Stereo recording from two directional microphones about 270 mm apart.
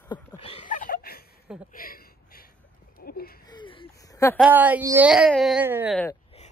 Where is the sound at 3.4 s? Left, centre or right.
Centre.